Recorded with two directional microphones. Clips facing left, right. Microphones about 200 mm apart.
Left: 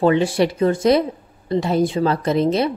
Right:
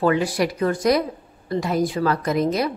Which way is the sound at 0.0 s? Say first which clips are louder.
Left 4 dB; 25° left (ahead or behind).